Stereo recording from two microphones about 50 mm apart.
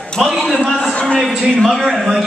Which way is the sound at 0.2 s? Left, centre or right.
Centre.